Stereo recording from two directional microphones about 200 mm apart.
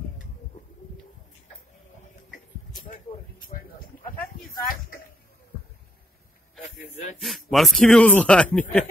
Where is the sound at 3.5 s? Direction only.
40° left (ahead or behind).